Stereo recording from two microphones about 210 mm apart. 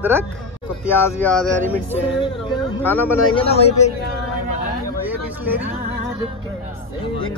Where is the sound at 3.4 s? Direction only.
30° left (ahead or behind).